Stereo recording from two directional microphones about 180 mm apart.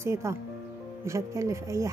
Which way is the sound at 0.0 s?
15° right (ahead or behind).